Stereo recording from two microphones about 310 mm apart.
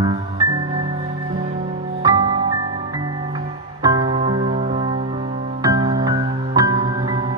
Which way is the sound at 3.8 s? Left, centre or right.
Centre.